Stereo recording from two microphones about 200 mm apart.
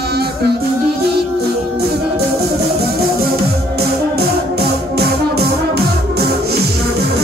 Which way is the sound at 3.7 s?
55° right (ahead or behind).